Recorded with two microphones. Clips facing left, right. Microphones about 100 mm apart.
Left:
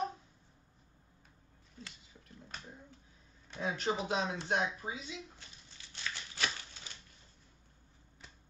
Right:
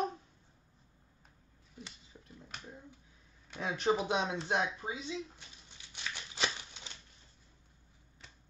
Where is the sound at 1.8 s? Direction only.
15° right (ahead or behind).